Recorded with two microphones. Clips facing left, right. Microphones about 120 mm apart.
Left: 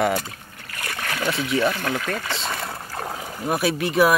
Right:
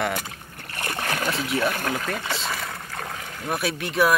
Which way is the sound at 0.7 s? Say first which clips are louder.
Right 2 dB; 30° right (ahead or behind).